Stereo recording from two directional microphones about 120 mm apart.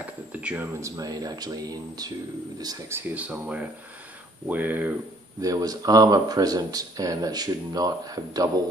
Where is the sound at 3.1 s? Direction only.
10° right (ahead or behind).